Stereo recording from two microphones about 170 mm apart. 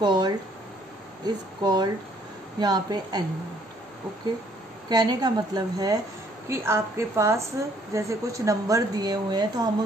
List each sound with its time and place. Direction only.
0.0 s a woman's voice: 25° right (ahead or behind)
4.8 s a woman's voice: 25° right (ahead or behind)